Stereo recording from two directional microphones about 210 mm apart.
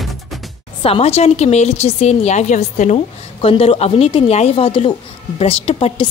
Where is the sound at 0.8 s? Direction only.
30° left (ahead or behind).